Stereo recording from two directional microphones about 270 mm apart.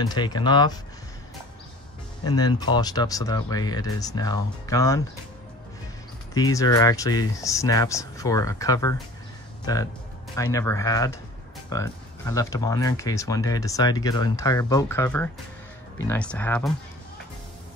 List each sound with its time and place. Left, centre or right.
0.0 s speech: centre
2.2 s speech: centre
6.3 s speech: centre
10.3 s speech: centre